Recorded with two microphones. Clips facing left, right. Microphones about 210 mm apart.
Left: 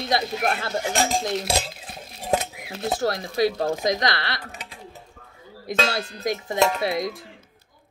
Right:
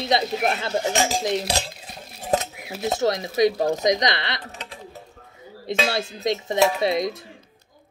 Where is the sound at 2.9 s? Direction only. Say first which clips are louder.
Right 3 dB; 20° right (ahead or behind).